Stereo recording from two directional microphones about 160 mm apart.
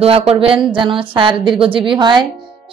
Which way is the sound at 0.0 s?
40° right (ahead or behind).